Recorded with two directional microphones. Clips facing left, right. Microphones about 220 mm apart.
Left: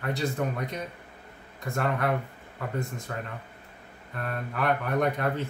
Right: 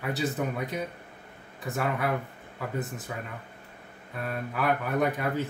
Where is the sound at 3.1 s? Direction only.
10° right (ahead or behind).